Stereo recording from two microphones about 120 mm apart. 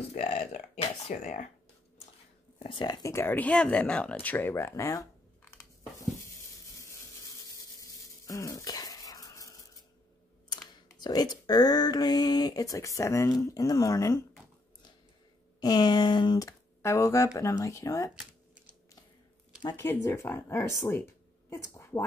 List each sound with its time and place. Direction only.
0.1 s speech: 60° left (ahead or behind); by 1.5 s 80° left
2.6 s speech: 40° left (ahead or behind); by 5.5 s 25° left (ahead or behind)
6.8 s wood: 25° left (ahead or behind)
7.8 s a sound: 25° left (ahead or behind)
11.0 s speech: 35° left (ahead or behind)
15.6 s speech: 35° left (ahead or behind)
16.3 s speech: 25° left (ahead or behind)
18.1 s computer keyboard: 10° right (ahead or behind)
19.6 s speech: 35° left (ahead or behind)
19.9 s speech: 20° left (ahead or behind)